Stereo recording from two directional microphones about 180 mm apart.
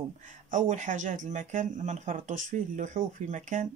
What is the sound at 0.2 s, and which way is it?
Speech, 45° right (ahead or behind).